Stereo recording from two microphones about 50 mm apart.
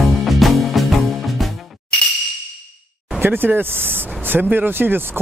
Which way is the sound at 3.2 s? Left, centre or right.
Right.